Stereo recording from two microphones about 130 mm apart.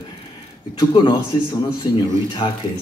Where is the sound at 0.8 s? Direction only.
35° left (ahead or behind).